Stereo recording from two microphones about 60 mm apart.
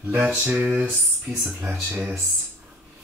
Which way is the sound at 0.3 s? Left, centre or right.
Centre.